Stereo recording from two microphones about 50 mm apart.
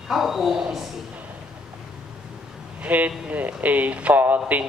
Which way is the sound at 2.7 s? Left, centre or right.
Right.